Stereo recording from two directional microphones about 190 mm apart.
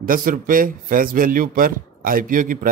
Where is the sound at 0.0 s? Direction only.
45° right (ahead or behind).